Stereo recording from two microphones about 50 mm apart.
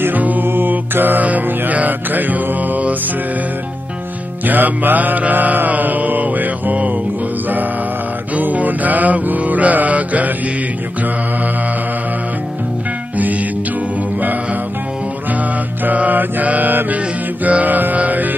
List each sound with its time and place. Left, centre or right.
0.0 s music: right
0.5 s mantra: right
4.5 s mantra: right
8.4 s mantra: right
15.8 s mantra: right